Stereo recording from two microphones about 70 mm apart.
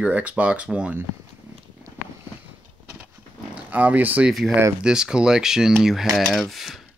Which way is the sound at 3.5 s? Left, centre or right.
Right.